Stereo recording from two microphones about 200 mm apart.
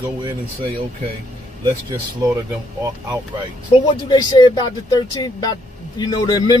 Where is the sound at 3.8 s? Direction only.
20° left (ahead or behind).